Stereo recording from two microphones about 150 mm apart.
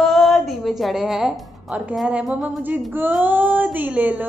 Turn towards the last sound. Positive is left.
turn(degrees=-10)  # may be behind; listen again after turning